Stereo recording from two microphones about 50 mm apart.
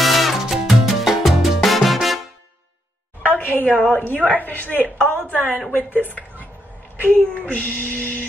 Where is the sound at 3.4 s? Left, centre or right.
Left.